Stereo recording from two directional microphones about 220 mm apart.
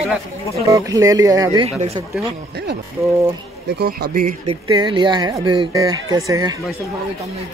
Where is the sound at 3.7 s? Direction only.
45° right (ahead or behind).